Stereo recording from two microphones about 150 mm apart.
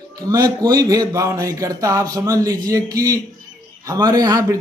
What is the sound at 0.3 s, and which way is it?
Speech, 25° right (ahead or behind).